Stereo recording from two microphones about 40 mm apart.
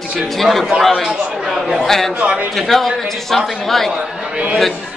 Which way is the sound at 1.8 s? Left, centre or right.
Centre.